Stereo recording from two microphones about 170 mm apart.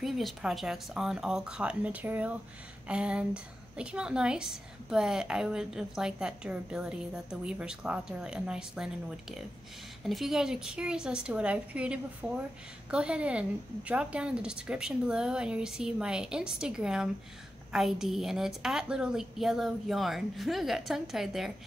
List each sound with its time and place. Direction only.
0.0 s a woman's voice: centre (ahead or behind)